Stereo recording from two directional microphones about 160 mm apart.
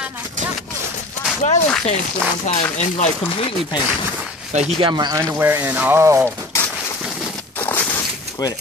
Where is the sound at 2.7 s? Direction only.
45° left (ahead or behind).